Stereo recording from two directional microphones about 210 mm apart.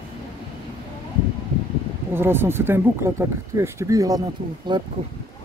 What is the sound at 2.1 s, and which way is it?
Speech, 10° right (ahead or behind).